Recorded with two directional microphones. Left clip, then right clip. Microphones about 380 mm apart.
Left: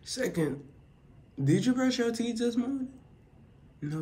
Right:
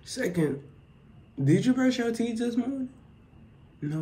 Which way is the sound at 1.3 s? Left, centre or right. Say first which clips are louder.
Right 3 dB; centre.